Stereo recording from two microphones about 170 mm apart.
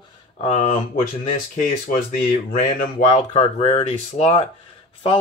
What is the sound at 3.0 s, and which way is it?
Speech, 35° left (ahead or behind).